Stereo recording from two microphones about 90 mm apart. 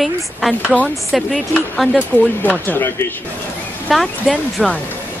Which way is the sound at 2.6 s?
25° left (ahead or behind).